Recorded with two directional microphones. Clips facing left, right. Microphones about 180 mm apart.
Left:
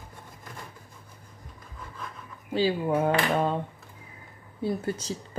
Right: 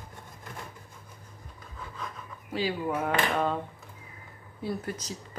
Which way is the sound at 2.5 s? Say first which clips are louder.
Left 5 dB; 30° left (ahead or behind).